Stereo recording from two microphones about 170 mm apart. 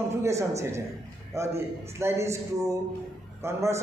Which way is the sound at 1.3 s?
15° right (ahead or behind).